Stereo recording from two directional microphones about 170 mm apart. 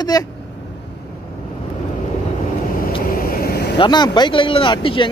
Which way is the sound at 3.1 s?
60° left (ahead or behind).